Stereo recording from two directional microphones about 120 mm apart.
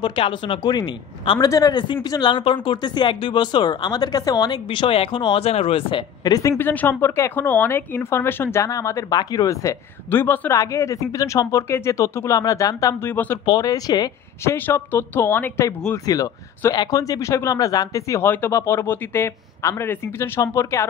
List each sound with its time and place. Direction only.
0.0 s speech: 40° left (ahead or behind)
6.6 s speech: 15° left (ahead or behind)
10.0 s a woman's voice: 20° left (ahead or behind)
13.5 s speech: 30° left (ahead or behind)
14.4 s speech: 20° left (ahead or behind)